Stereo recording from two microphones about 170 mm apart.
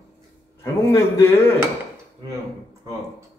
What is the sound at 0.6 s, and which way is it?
Speech, 15° left (ahead or behind).